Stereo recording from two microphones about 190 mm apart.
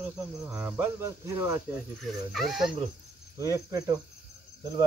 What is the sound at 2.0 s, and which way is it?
Speech, centre (ahead or behind).